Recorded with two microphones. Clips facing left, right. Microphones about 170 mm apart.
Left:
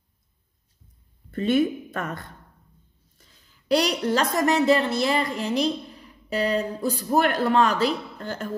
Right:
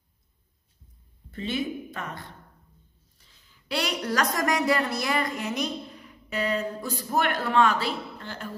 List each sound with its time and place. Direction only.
1.3 s a woman's voice: 50° left (ahead or behind)
3.2 s a woman's voice: 40° left (ahead or behind)